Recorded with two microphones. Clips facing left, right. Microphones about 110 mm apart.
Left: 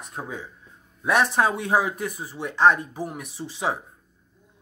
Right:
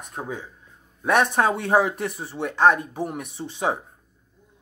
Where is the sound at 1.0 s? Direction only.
55° right (ahead or behind).